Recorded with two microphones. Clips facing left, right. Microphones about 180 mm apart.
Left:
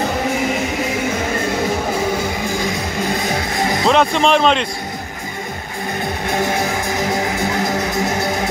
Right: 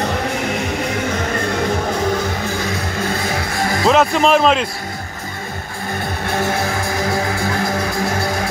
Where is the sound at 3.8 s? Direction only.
Centre (ahead or behind).